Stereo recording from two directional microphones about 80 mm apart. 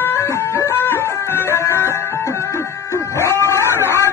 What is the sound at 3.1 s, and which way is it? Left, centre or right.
Dog, left.